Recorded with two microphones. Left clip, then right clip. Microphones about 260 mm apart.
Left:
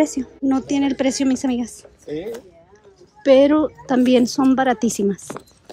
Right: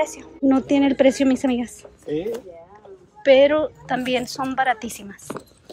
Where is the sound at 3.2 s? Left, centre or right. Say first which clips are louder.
Left 1 dB; centre.